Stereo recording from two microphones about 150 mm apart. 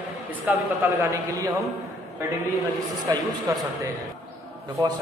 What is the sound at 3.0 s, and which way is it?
Speech, 25° right (ahead or behind).